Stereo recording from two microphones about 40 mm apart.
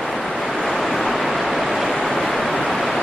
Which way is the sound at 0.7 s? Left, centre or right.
Centre.